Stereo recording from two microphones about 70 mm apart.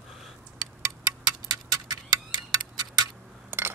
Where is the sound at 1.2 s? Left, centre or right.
Right.